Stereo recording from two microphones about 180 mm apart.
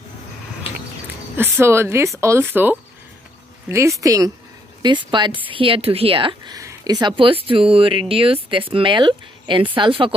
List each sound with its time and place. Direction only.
1.3 s a woman's voice: 10° right (ahead or behind); by 10.1 s 30° right (ahead or behind)